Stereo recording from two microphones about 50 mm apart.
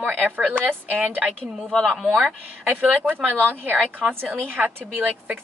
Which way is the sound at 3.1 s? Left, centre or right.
Right.